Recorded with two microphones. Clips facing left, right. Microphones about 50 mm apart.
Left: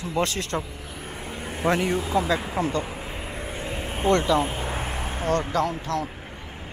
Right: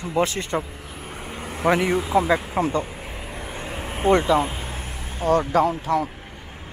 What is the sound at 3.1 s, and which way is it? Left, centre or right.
Vehicle, left.